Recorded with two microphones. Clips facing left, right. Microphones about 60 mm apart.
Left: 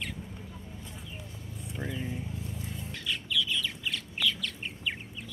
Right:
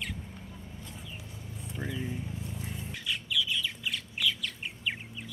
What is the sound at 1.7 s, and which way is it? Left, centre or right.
Vehicle, centre.